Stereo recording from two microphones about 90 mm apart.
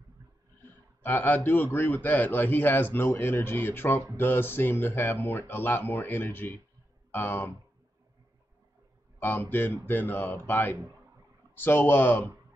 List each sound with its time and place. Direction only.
1.0 s a man's voice: 20° left (ahead or behind)
9.2 s a man's voice: 20° left (ahead or behind)